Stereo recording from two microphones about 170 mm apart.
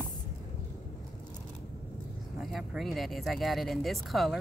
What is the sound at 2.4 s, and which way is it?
Speech, centre (ahead or behind).